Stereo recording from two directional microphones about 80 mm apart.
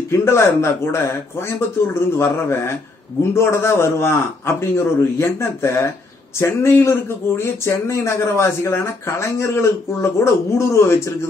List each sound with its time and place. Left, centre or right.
0.1 s speech: left
2.1 s speech: left